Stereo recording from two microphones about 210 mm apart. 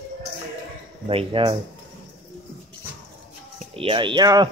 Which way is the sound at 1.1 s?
25° right (ahead or behind).